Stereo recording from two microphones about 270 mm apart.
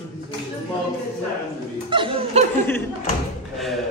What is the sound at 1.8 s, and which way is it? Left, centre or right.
Speech, centre.